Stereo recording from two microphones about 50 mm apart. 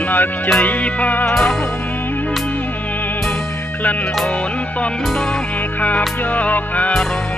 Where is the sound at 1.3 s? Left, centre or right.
Centre.